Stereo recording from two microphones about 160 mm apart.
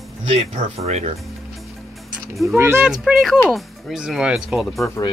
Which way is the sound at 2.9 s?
Centre (ahead or behind).